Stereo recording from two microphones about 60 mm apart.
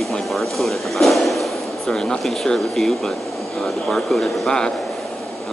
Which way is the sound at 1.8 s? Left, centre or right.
Centre.